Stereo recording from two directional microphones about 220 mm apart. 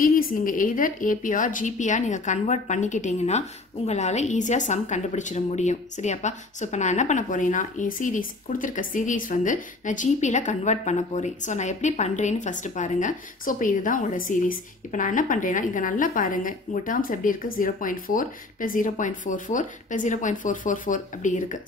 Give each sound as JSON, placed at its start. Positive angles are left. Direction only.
{"t": 0.0, "sound": "a woman's voice", "side_deg": 40}